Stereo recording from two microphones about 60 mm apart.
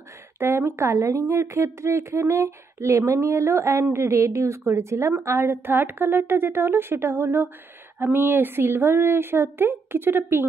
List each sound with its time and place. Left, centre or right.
0.4 s a woman's voice: right